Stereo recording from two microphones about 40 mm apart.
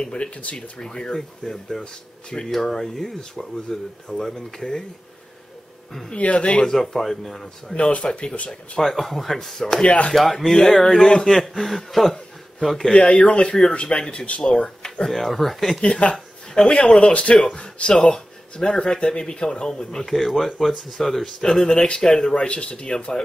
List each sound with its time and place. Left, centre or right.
0.0 s speech: left
6.1 s speech: left
6.6 s speech: centre
7.7 s speech: left
8.7 s speech: centre
9.8 s speech: left
10.5 s speech: centre
11.2 s speech: centre
12.9 s speech: left
15.1 s speech: centre
15.8 s speech: left; by 20.1 s centre
20.1 s speech: centre
21.6 s speech: left
22.3 s speech: left